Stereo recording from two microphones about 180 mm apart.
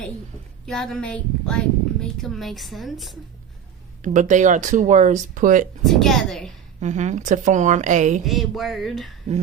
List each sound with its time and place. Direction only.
0.7 s a woman's voice: centre (ahead or behind)
4.0 s speech: 45° right (ahead or behind)
5.9 s a woman's voice: centre (ahead or behind)
6.8 s speech: 40° right (ahead or behind)
8.3 s a woman's voice: centre (ahead or behind)